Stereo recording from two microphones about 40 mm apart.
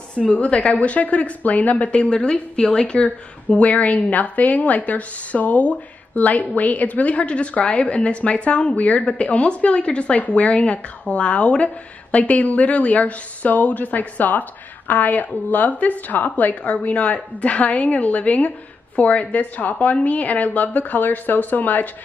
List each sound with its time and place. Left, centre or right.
0.1 s a woman's voice: left
1.9 s a woman's voice: left